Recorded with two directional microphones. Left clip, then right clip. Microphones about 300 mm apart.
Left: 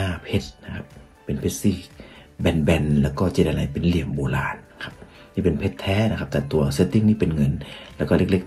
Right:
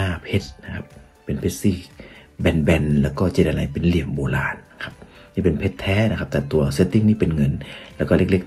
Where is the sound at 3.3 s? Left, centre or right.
Centre.